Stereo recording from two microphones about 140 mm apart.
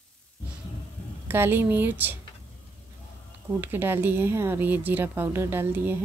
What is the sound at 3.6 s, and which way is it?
Speech, 15° right (ahead or behind).